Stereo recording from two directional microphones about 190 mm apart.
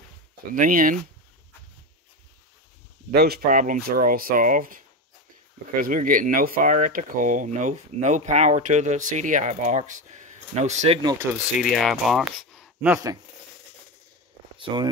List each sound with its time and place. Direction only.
0.6 s speech: 45° right (ahead or behind)
3.1 s speech: 55° right (ahead or behind); by 11.0 s 35° right (ahead or behind)
11.3 s speech: 10° right (ahead or behind)
11.7 s speech: centre (ahead or behind)
14.6 s speech: 25° right (ahead or behind)